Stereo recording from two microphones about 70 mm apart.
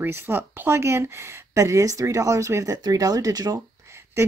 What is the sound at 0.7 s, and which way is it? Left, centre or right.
Speech, right.